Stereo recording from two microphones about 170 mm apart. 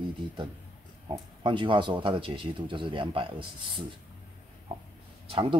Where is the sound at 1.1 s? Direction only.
30° right (ahead or behind).